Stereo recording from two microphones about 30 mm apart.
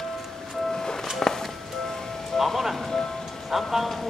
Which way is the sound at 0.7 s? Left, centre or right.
Left.